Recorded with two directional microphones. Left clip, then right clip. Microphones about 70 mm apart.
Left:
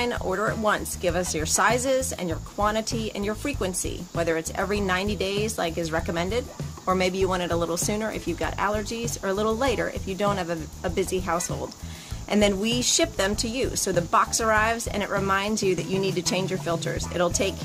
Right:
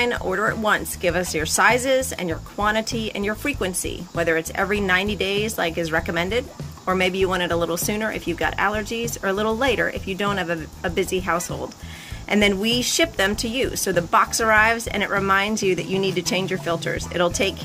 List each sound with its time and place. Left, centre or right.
0.2 s speech: centre
0.7 s speech: left